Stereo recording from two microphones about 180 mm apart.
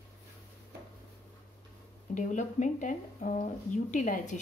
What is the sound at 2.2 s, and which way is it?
Speech, 45° left (ahead or behind).